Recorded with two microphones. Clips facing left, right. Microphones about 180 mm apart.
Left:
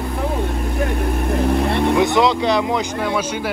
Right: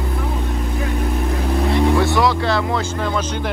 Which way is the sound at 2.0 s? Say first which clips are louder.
Left 2 dB; 20° left (ahead or behind).